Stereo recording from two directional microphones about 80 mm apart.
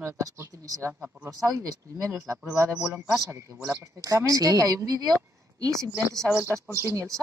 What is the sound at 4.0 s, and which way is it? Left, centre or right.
A woman's voice, right.